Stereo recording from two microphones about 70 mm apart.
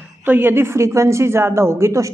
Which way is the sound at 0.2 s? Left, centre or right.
Right.